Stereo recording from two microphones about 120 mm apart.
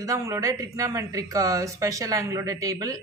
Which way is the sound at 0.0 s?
25° right (ahead or behind).